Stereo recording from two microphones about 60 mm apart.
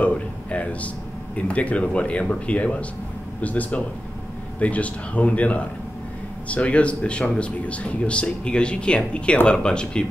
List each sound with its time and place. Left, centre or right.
0.0 s speech: left